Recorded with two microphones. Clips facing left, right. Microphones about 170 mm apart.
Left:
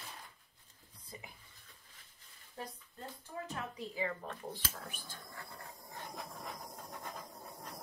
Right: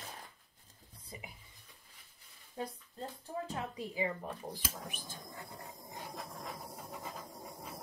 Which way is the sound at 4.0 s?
15° right (ahead or behind).